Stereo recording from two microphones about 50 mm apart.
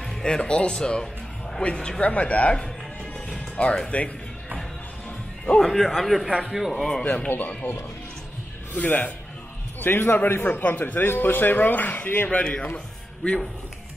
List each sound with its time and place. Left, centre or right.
0.2 s speech: centre
3.3 s music: left
3.9 s speech: left
5.6 s speech: centre
7.1 s a man's voice: left
8.7 s a man's voice: left
9.8 s a man's voice: left
12.3 s a man's voice: left